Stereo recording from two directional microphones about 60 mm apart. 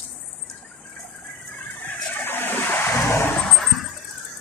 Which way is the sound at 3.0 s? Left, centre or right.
Left.